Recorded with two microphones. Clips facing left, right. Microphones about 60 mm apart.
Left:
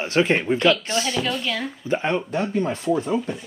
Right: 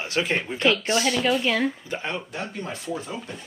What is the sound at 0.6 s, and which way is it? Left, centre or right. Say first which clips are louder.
Speech: left 2 dB; right.